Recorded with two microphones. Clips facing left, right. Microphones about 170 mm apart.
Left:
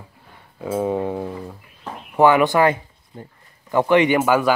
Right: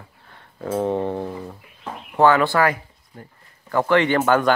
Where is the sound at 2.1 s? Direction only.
15° left (ahead or behind).